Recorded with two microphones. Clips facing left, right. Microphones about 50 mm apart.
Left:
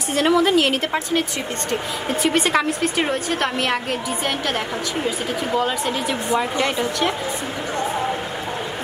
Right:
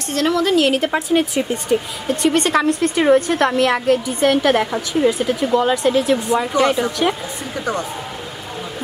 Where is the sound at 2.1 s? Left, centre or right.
Centre.